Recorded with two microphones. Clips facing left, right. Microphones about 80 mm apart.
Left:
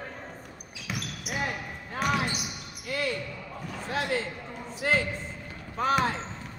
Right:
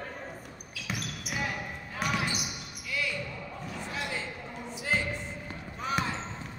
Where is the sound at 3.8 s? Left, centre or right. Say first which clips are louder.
Left 8 dB; left.